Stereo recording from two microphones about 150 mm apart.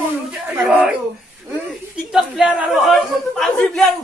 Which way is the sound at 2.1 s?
5° right (ahead or behind).